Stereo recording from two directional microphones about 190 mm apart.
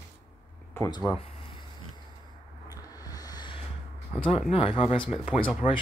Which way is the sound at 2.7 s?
20° left (ahead or behind).